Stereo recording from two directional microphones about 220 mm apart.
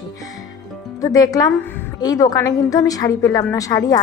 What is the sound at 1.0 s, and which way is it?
A woman's voice, 15° left (ahead or behind).